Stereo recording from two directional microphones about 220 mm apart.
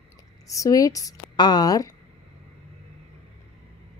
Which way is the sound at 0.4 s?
15° left (ahead or behind).